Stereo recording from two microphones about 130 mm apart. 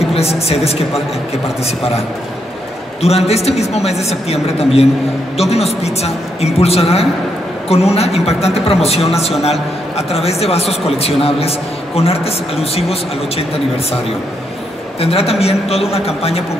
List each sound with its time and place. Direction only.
0.1 s a man's voice: 50° left (ahead or behind)
3.0 s a man's voice: 55° left (ahead or behind)
15.0 s a man's voice: 50° left (ahead or behind)